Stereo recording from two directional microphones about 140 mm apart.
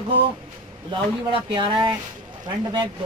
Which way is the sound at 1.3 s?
35° right (ahead or behind).